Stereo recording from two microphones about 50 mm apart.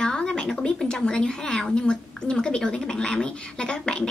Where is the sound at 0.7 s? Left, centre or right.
Centre.